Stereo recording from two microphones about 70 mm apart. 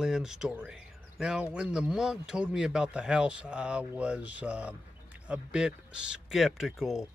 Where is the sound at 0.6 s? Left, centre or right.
Centre.